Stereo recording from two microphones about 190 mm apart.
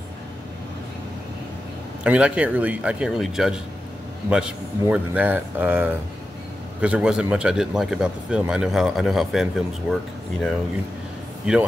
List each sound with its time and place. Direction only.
2.0 s speech: 5° right (ahead or behind)